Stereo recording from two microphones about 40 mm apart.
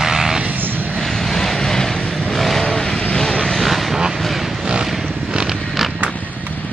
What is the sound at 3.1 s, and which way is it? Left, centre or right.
Vehicle, centre.